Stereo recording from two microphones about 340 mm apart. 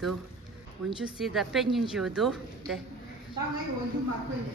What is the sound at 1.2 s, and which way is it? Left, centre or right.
A woman's voice, centre.